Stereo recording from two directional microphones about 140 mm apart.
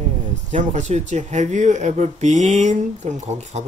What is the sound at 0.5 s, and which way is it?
Speech, 60° right (ahead or behind).